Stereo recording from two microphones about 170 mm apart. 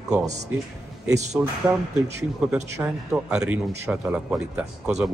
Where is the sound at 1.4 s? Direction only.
5° right (ahead or behind).